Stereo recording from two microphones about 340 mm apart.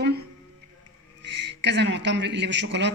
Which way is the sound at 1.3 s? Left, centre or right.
Right.